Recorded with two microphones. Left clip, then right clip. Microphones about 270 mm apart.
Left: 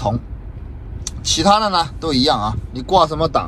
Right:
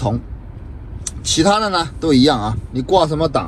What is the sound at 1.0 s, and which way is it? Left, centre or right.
Speech, left.